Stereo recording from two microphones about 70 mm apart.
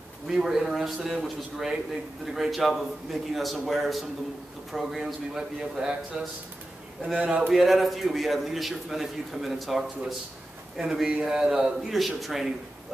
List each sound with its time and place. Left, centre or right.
0.3 s a man's voice: centre
7.5 s a man's voice: centre